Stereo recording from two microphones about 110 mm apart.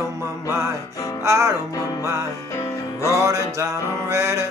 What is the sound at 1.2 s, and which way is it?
Music, 25° right (ahead or behind).